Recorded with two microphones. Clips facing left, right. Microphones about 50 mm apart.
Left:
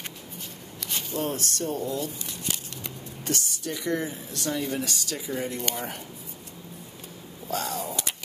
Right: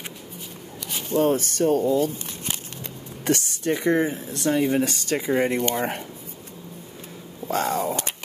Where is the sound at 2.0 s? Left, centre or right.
Right.